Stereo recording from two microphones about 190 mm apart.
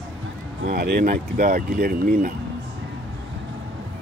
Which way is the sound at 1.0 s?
45° right (ahead or behind).